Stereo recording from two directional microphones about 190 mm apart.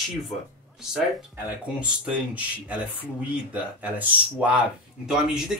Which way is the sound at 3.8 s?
10° right (ahead or behind).